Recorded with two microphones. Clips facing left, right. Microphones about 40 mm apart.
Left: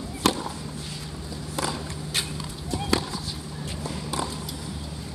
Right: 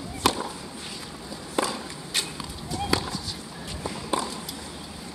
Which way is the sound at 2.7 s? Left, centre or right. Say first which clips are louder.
Left 1 dB; centre.